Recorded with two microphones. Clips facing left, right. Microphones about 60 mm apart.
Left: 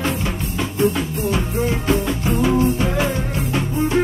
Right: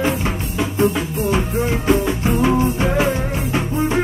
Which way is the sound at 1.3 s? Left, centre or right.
Centre.